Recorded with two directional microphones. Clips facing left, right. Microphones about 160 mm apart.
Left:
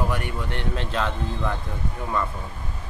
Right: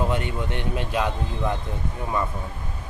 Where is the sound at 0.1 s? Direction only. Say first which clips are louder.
Right 2 dB; 20° right (ahead or behind).